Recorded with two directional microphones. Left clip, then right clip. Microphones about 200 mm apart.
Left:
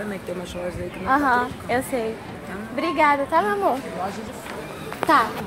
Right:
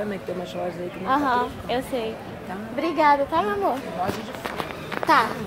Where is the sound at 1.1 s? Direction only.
25° left (ahead or behind).